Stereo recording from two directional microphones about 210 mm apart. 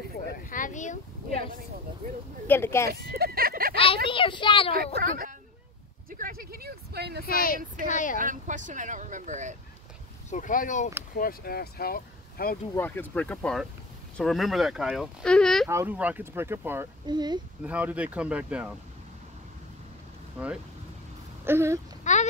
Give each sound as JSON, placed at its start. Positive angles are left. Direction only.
{"t": 0.5, "sound": "a sound", "side_deg": 40}
{"t": 2.4, "sound": "speech", "side_deg": 10}
{"t": 2.9, "sound": "a sound", "side_deg": -45}
{"t": 3.7, "sound": "a woman's voice", "side_deg": 25}
{"t": 4.9, "sound": "speech", "side_deg": -40}
{"t": 7.2, "sound": "speech", "side_deg": 45}
{"t": 8.2, "sound": "speech", "side_deg": -40}
{"t": 10.3, "sound": "speech", "side_deg": 40}
{"t": 12.7, "sound": "speech", "side_deg": 10}
{"t": 15.7, "sound": "speech", "side_deg": -10}
{"t": 17.6, "sound": "speech", "side_deg": -5}
{"t": 21.5, "sound": "speech", "side_deg": -10}
{"t": 22.0, "sound": "speech", "side_deg": 35}